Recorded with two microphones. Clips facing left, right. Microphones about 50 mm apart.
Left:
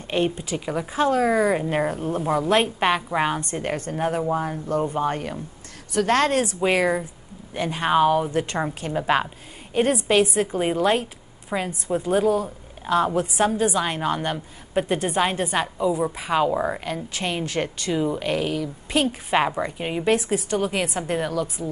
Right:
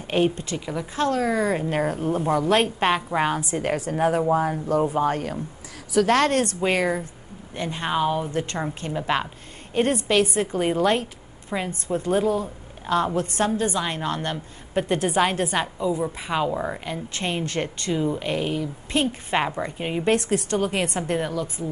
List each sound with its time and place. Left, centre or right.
0.1 s a woman's voice: centre
14.7 s a woman's voice: centre
16.8 s a woman's voice: centre
21.6 s a woman's voice: centre